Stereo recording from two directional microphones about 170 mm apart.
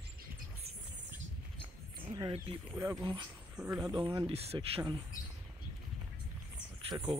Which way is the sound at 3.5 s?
10° right (ahead or behind).